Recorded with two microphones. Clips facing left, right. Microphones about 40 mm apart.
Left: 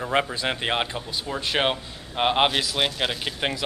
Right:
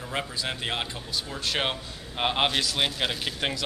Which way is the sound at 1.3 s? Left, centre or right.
Centre.